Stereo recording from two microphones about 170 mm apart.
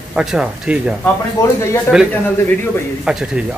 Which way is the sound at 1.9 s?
5° right (ahead or behind).